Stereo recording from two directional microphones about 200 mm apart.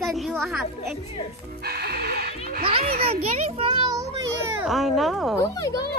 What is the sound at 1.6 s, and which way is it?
Music, 50° right (ahead or behind).